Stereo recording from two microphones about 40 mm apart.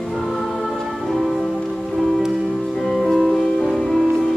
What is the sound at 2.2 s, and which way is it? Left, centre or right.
Music, centre.